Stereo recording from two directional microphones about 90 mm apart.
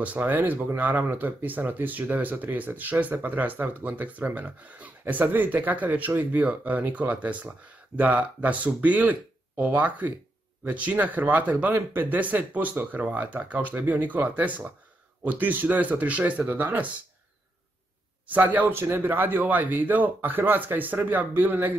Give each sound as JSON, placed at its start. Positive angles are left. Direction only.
{"t": 0.0, "sound": "speech", "side_deg": -20}
{"t": 18.2, "sound": "speech", "side_deg": -20}